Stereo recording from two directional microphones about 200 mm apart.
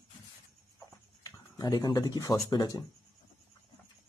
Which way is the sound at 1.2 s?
20° left (ahead or behind).